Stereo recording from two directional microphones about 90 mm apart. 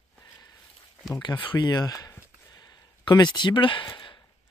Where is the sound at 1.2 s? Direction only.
55° left (ahead or behind).